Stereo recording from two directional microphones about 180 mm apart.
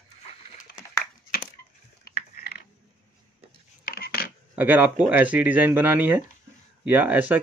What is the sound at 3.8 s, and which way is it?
Coin, 55° left (ahead or behind).